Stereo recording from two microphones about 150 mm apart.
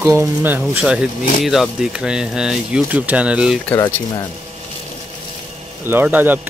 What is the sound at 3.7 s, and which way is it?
Speech, 20° left (ahead or behind).